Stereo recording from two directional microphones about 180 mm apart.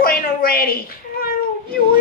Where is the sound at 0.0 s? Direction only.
55° left (ahead or behind).